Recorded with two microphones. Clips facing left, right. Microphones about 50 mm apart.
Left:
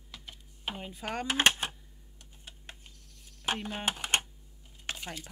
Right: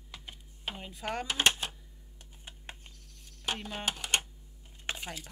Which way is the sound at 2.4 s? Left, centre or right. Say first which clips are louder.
Right 2 dB; right.